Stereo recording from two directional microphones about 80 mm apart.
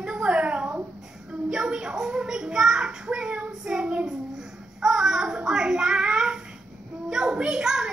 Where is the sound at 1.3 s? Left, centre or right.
Centre.